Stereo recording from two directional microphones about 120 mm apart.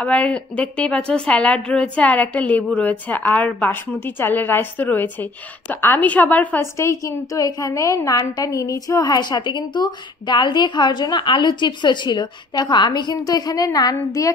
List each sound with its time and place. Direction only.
0.0 s a woman's voice: 10° left (ahead or behind)
6.6 s a woman's voice: 25° left (ahead or behind)